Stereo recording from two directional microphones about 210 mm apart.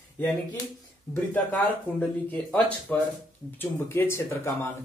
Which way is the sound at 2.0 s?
5° left (ahead or behind).